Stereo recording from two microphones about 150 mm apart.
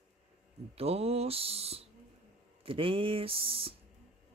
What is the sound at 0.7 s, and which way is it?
Speech, 40° right (ahead or behind).